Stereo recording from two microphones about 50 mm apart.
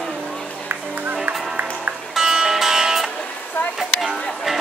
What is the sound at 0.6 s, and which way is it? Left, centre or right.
Music, right.